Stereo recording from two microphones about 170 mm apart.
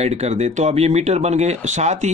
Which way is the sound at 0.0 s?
40° right (ahead or behind).